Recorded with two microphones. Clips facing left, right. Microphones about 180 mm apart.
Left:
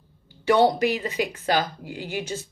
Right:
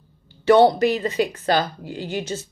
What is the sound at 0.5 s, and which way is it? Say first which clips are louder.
Speech: right 5 dB; 10° left (ahead or behind).